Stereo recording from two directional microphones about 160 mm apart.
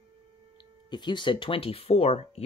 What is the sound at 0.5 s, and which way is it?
Speech, 30° left (ahead or behind).